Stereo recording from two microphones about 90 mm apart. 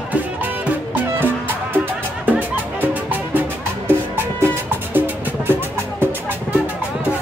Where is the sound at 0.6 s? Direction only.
20° right (ahead or behind).